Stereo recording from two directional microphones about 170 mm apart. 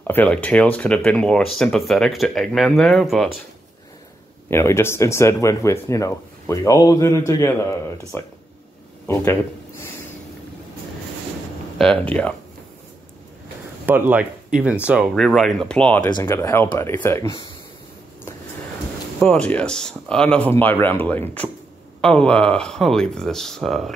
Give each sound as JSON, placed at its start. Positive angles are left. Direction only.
{"t": 0.0, "sound": "speech", "side_deg": 10}
{"t": 4.5, "sound": "speech", "side_deg": 15}
{"t": 11.8, "sound": "speech", "side_deg": 5}
{"t": 13.8, "sound": "speech", "side_deg": -10}
{"t": 19.1, "sound": "speech", "side_deg": 5}